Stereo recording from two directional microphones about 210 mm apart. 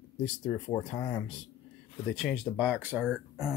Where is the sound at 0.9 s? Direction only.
15° left (ahead or behind).